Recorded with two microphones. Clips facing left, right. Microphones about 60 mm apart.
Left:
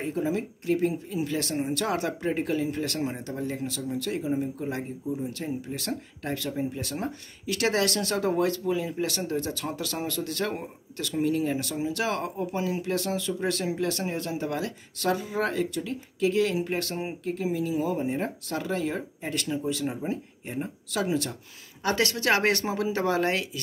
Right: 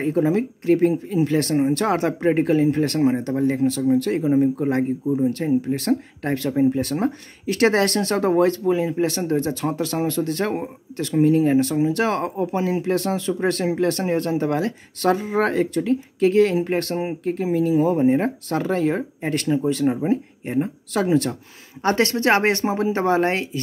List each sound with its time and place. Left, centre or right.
0.0 s speech: right
21.8 s speech: right